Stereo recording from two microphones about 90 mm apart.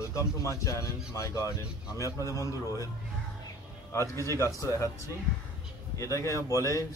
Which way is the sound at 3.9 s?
35° left (ahead or behind).